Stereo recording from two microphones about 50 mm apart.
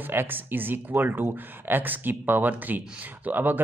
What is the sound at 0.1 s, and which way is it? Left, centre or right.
Speech, right.